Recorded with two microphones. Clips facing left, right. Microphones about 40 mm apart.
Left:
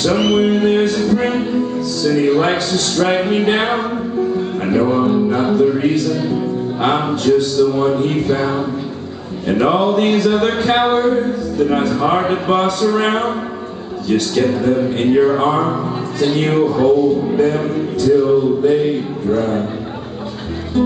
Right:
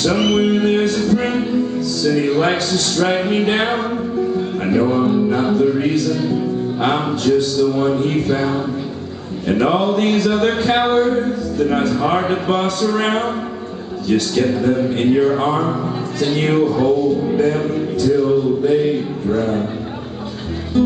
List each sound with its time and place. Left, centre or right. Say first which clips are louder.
0.0 s music: left 1 dB; centre
2.0 s speech: left 2 dB; centre
4.4 s music: even; centre
7.5 s speech: left 2 dB; centre